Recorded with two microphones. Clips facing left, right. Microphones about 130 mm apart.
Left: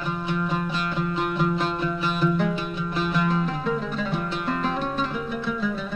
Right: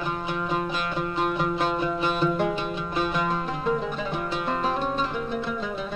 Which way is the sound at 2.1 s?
30° right (ahead or behind).